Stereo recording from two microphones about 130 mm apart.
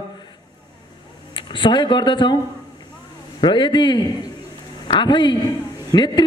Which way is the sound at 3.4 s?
35° left (ahead or behind).